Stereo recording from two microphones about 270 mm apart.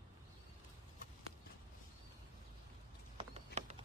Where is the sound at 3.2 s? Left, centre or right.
Right.